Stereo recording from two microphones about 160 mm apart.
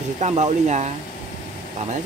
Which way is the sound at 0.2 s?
45° right (ahead or behind).